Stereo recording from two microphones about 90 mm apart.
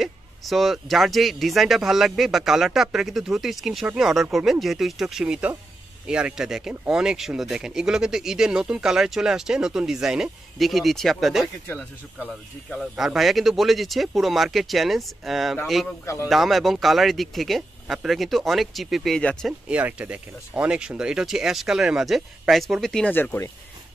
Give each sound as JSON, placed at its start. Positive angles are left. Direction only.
{"t": 0.0, "sound": "speech", "side_deg": 0}
{"t": 12.9, "sound": "speech", "side_deg": -5}
{"t": 19.7, "sound": "speech", "side_deg": -15}
{"t": 23.1, "sound": "speech", "side_deg": 20}